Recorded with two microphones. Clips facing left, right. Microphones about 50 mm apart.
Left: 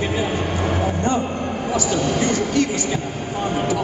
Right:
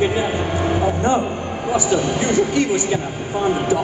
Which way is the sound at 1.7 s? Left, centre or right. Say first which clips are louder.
Right 3 dB; right.